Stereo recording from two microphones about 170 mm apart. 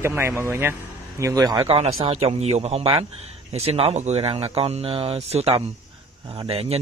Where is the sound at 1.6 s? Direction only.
35° right (ahead or behind).